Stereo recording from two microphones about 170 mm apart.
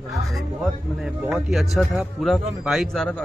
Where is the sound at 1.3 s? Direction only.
Centre (ahead or behind).